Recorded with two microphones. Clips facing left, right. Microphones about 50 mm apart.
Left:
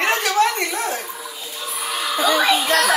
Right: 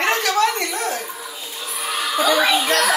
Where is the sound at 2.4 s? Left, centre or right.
Centre.